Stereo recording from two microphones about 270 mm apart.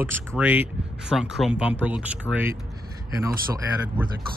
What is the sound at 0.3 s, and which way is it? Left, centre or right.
Speech, centre.